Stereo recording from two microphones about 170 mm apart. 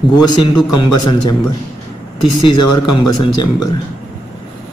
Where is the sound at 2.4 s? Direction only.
25° left (ahead or behind).